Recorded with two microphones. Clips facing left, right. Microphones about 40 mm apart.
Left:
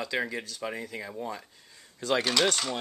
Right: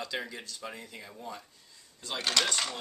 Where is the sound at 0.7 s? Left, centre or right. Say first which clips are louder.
Left 8 dB; left.